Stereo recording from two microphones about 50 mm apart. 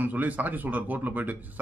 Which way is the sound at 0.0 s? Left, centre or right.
Right.